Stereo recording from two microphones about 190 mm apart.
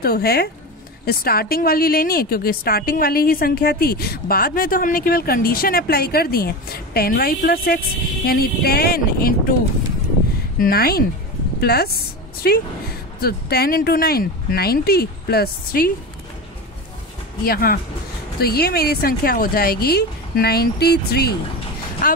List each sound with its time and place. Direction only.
0.0 s a woman's voice: 55° left (ahead or behind)
10.6 s a woman's voice: 55° left (ahead or behind)
17.5 s a woman's voice: 50° left (ahead or behind)